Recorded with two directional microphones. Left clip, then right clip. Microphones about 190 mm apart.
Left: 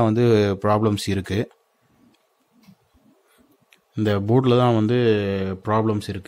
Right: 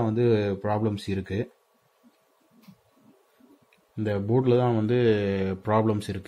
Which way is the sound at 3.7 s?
40° left (ahead or behind).